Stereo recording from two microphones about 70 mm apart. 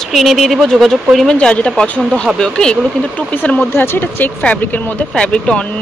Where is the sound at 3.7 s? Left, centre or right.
Left.